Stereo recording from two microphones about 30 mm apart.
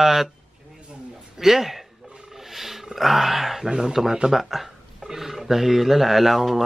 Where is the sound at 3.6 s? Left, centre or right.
Right.